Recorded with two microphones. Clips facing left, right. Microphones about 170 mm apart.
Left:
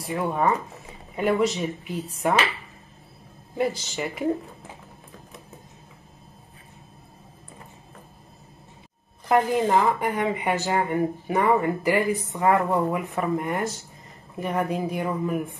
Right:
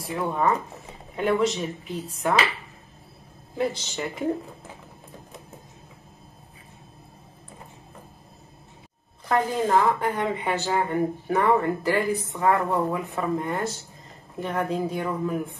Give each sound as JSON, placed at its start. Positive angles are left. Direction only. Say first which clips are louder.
{"t": 0.1, "sound": "a woman's voice", "louder": "left 1 dB", "side_deg": 10}
{"t": 3.5, "sound": "a woman's voice", "louder": "left 1 dB", "side_deg": 5}
{"t": 9.3, "sound": "speech", "louder": "left 2 dB", "side_deg": 15}